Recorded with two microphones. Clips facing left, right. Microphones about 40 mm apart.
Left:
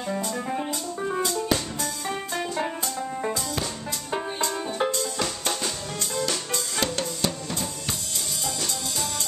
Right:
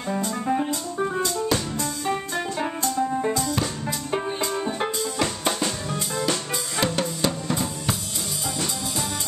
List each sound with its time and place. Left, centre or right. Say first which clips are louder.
0.1 s music: right 5 dB; centre
4.6 s music: even; right
5.2 s drum kit: right 4 dB; centre